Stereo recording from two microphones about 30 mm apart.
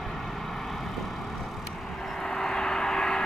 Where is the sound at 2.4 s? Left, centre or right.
Left.